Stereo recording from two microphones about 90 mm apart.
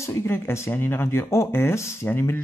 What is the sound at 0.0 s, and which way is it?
Speech, 30° left (ahead or behind).